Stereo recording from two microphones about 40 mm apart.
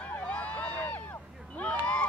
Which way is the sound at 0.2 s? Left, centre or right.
Left.